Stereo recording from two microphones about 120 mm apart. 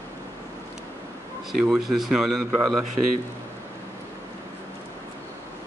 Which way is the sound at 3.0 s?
35° right (ahead or behind).